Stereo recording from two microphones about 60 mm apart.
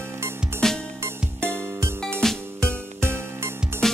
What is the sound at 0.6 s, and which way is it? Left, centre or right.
Music, centre.